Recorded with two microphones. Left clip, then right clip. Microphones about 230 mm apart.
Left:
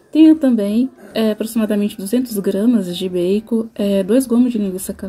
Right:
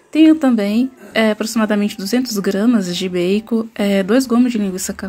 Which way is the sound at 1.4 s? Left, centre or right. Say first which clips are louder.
Right 2 dB; centre.